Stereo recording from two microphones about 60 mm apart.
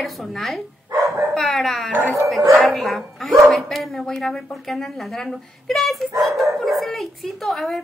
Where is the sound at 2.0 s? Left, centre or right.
Right.